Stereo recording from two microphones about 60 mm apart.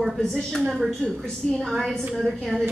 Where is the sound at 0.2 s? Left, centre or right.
Centre.